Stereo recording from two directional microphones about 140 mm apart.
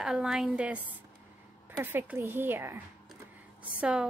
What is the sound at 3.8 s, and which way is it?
Speech, 5° right (ahead or behind).